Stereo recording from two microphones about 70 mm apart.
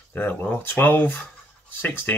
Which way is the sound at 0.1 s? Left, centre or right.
Left.